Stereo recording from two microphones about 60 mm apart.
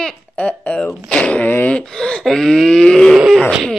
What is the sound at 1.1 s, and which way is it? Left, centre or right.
Wail, centre.